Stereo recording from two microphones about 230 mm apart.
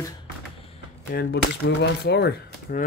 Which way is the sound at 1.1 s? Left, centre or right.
Left.